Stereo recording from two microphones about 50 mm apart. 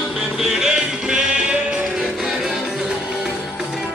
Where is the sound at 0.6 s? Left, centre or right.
Centre.